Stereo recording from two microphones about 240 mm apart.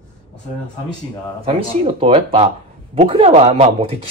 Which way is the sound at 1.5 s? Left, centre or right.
Right.